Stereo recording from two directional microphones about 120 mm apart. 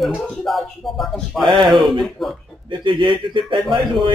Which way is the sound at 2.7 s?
45° right (ahead or behind).